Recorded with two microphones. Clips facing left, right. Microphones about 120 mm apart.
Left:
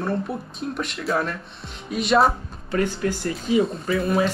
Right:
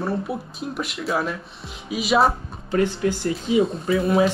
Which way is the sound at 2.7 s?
30° right (ahead or behind).